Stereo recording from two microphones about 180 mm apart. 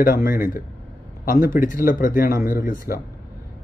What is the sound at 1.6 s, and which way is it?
Speech, 50° left (ahead or behind).